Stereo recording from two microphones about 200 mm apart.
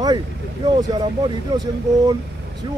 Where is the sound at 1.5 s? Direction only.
20° right (ahead or behind).